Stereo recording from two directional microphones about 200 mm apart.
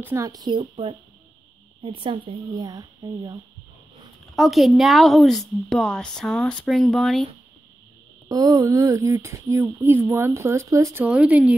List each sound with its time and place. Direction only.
0.0 s speech: 15° right (ahead or behind)
4.3 s speech: centre (ahead or behind)
8.3 s speech: 15° right (ahead or behind)